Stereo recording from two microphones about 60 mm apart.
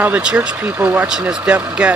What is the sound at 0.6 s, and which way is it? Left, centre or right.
Speech, right.